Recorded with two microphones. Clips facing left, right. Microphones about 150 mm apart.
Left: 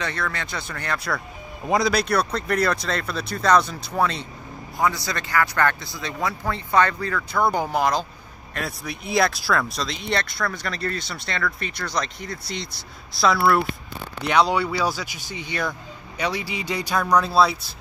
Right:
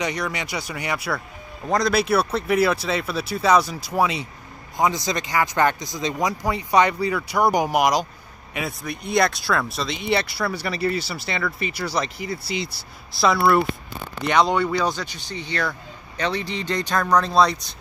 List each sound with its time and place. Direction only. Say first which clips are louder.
0.0 s speech: right 2 dB; 15° right (ahead or behind)
4.7 s speech: right 2 dB; 20° right (ahead or behind)
8.5 s speech: right 2 dB; centre (ahead or behind)